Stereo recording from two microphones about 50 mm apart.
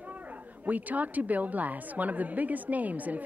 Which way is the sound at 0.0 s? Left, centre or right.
Right.